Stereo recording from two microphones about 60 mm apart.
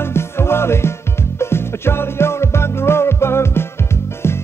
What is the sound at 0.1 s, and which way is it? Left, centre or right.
Music, left.